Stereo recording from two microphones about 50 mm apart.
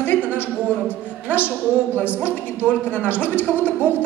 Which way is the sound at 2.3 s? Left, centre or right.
Left.